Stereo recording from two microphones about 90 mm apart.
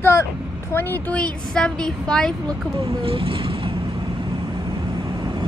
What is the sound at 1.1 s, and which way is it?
A woman's voice, 10° left (ahead or behind).